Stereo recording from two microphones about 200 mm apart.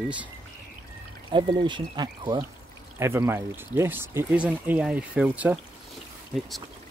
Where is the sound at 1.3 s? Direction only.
25° right (ahead or behind); by 5.6 s 5° right (ahead or behind).